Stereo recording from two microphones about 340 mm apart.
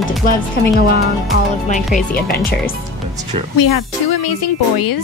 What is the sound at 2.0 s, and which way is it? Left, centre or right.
Speech, left.